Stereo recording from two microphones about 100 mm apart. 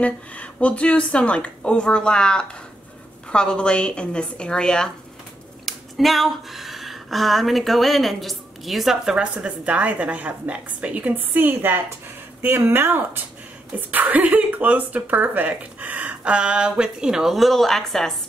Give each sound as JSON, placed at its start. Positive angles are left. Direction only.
{"t": 0.0, "sound": "a woman's voice", "side_deg": 15}